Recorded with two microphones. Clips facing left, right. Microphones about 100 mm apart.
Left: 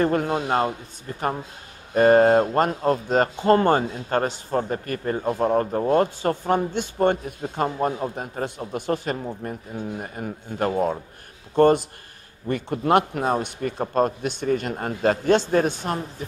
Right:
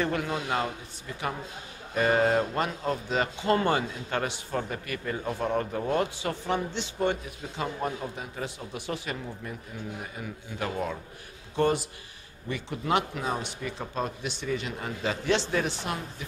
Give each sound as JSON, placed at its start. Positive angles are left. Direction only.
{"t": 0.0, "sound": "speech", "side_deg": 45}